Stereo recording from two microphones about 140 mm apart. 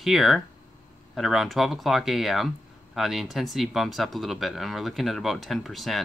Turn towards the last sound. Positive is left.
turn(degrees=0)  # may be behind; listen again after turning